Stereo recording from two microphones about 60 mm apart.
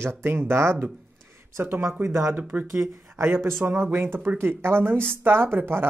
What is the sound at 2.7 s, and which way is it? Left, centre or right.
Speech, right.